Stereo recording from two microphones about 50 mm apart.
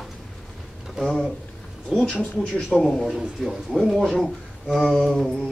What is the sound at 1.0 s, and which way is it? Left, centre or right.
Humming, centre.